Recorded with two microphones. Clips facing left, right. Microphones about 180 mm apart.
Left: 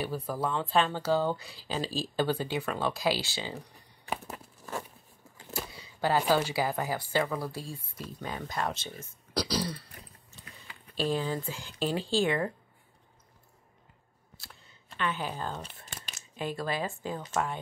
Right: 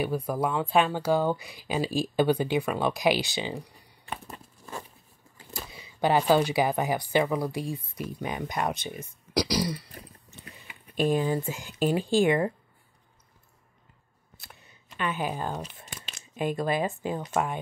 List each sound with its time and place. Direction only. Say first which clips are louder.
0.0 s speech: right 5 dB; 15° right (ahead or behind)
4.1 s a sound: left 2 dB; 5° left (ahead or behind)
5.5 s speech: left 3 dB; 20° right (ahead or behind)
14.4 s camera: right 2 dB; 20° right (ahead or behind)
16.3 s speech: right 6 dB; 15° right (ahead or behind)